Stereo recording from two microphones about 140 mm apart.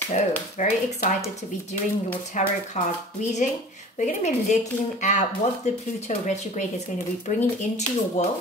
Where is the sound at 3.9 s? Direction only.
60° left (ahead or behind).